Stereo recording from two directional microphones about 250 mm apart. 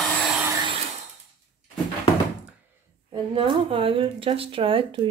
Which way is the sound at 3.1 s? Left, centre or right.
Centre.